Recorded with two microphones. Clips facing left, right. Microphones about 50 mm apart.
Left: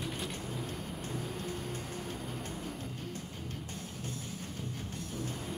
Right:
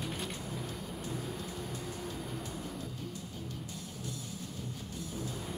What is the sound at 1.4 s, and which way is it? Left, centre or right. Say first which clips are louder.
Vehicle: left 2 dB; left.